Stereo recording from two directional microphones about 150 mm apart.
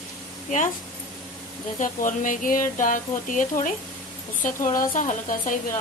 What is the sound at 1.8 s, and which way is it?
Speech, 60° left (ahead or behind).